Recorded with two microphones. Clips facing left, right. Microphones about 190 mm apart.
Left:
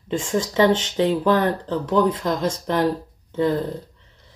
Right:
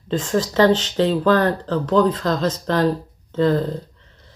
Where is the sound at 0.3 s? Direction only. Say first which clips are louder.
Right 2 dB; 20° left (ahead or behind).